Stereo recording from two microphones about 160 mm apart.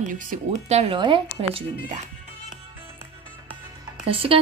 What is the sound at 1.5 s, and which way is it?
Speech, 45° right (ahead or behind).